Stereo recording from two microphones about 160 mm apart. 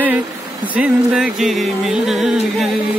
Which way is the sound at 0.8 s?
5° right (ahead or behind).